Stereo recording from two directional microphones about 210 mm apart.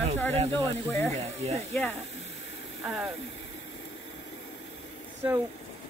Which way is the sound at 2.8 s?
Centre (ahead or behind).